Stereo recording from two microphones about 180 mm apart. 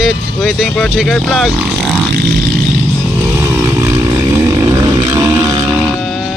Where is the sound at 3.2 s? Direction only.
10° right (ahead or behind).